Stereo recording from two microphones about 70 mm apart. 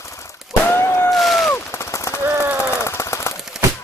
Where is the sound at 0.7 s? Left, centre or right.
Left.